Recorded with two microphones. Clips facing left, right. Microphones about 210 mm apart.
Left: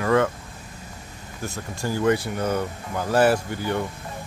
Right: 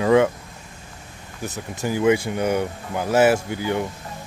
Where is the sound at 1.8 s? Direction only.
10° right (ahead or behind).